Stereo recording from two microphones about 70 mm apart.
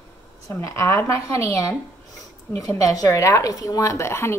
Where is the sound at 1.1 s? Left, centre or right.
Left.